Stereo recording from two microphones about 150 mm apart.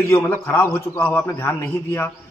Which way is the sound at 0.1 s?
15° left (ahead or behind).